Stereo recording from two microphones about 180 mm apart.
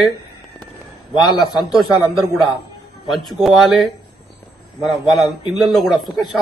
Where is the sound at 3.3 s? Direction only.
Centre (ahead or behind).